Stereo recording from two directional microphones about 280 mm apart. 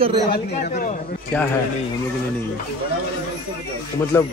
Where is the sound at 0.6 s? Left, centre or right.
Left.